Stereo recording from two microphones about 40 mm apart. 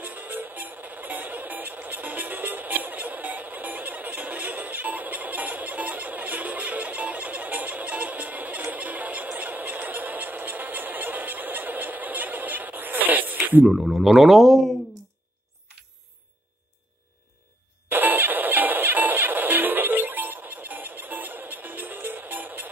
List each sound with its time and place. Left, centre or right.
0.0 s music: right
13.7 s speech: centre
17.8 s music: right